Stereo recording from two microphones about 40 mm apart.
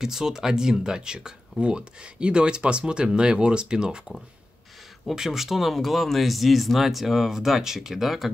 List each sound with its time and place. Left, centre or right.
0.0 s speech: centre
5.1 s speech: centre